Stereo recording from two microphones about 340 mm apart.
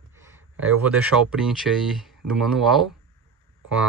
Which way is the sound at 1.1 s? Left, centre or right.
Right.